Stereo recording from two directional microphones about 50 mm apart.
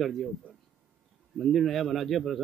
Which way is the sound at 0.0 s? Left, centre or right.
Centre.